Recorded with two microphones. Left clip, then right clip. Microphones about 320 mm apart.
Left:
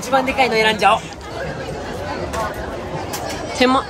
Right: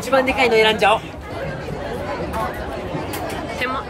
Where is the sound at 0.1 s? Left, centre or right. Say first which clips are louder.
Even; centre.